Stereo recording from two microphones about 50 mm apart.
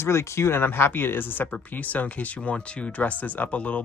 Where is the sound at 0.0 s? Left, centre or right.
Left.